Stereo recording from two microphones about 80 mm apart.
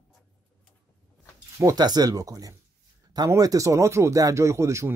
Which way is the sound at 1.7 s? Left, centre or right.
Right.